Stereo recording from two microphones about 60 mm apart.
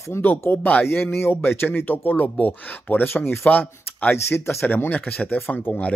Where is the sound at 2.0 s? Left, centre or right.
Left.